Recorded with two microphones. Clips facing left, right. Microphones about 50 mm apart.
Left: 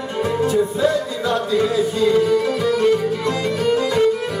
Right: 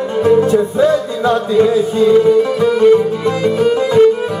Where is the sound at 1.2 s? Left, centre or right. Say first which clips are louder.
Right 7 dB; right.